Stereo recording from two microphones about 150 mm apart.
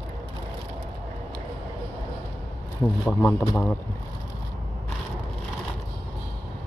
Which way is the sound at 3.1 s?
15° left (ahead or behind).